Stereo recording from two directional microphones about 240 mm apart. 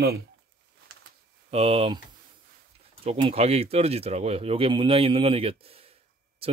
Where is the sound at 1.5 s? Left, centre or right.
Right.